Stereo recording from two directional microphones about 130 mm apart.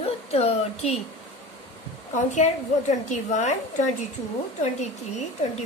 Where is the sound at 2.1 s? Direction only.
65° left (ahead or behind).